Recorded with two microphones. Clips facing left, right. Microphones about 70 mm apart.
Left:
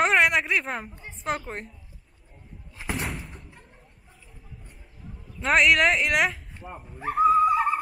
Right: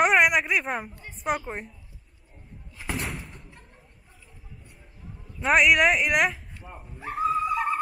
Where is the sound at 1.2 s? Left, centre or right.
Centre.